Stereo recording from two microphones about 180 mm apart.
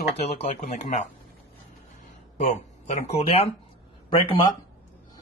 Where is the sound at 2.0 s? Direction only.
45° left (ahead or behind).